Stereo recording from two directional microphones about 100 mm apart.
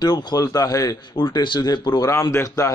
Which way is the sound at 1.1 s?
50° left (ahead or behind).